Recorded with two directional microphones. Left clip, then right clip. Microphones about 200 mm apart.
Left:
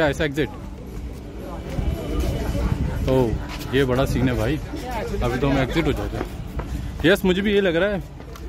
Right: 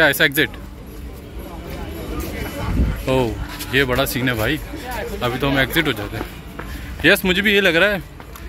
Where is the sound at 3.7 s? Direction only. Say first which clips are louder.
Right 3 dB; 10° left (ahead or behind).